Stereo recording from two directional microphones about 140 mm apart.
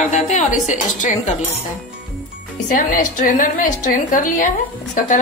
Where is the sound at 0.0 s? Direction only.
55° left (ahead or behind).